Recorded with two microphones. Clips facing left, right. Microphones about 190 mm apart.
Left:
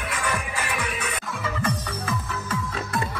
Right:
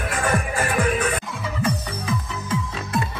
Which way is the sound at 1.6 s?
15° right (ahead or behind).